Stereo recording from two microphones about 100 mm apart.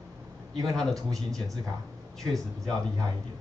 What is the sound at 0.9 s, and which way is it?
Speech, 35° right (ahead or behind).